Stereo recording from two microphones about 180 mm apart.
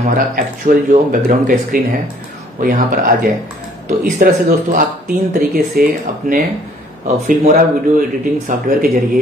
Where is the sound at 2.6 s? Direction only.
50° right (ahead or behind).